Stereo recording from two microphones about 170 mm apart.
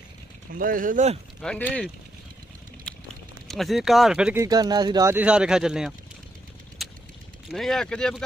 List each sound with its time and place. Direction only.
0.6 s speech: 55° right (ahead or behind)
1.4 s speech: 5° left (ahead or behind)
2.9 s a sound: 5° left (ahead or behind)
3.4 s speech: centre (ahead or behind)
4.4 s speech: 20° right (ahead or behind)
5.1 s speech: 5° right (ahead or behind)
6.8 s a sound: centre (ahead or behind)
7.4 s speech: centre (ahead or behind)